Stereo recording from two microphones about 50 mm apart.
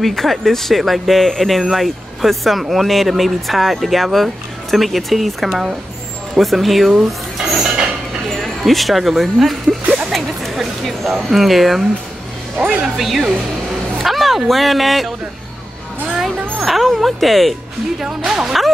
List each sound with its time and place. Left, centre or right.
0.0 s speech: centre
7.1 s a sound: centre
8.3 s speech: centre
10.0 s a sound: centre
11.2 s speech: centre
12.5 s speech: centre
12.9 s speech: centre
16.6 s speech: centre
18.0 s speech: centre